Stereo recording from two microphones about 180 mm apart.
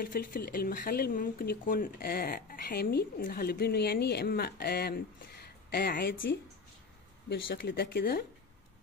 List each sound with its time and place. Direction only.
0.0 s speech: 50° left (ahead or behind)